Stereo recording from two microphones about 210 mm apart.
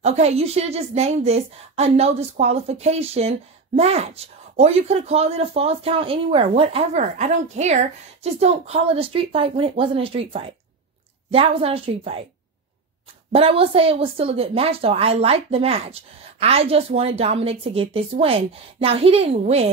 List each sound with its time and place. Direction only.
0.0 s a woman's voice: 30° right (ahead or behind)
13.3 s a woman's voice: 25° right (ahead or behind)